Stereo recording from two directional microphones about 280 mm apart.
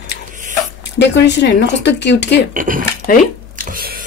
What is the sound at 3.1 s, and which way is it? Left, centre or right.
Speech, left.